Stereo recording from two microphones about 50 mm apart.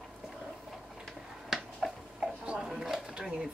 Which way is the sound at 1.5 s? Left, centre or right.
Centre.